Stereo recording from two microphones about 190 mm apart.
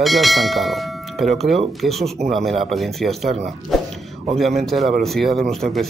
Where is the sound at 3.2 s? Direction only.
35° right (ahead or behind).